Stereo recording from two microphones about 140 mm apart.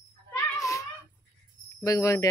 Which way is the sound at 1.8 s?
25° left (ahead or behind).